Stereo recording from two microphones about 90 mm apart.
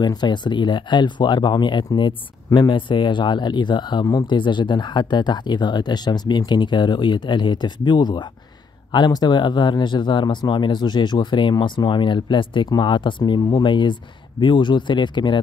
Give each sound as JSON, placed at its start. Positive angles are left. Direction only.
{"t": 0.0, "sound": "speech", "side_deg": 55}